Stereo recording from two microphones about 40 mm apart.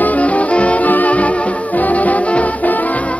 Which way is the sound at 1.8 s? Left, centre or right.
Left.